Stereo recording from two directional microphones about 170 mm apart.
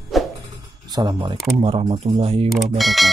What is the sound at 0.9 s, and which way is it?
Speech, 25° right (ahead or behind).